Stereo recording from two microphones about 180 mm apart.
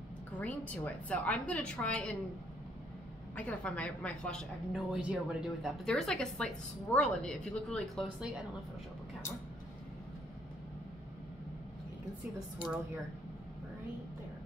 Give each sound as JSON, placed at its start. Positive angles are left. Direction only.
{"t": 0.4, "sound": "a woman's voice", "side_deg": 10}
{"t": 3.3, "sound": "a woman's voice", "side_deg": 5}